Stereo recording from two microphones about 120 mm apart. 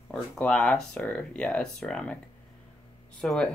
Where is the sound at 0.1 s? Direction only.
10° left (ahead or behind).